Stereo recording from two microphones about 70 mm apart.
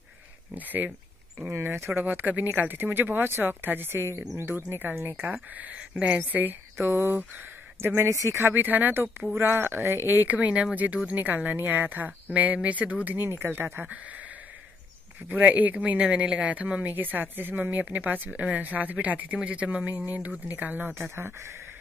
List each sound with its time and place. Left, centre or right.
0.6 s speech: right
1.4 s speech: right
7.9 s speech: right
15.2 s speech: right
20.9 s speech: right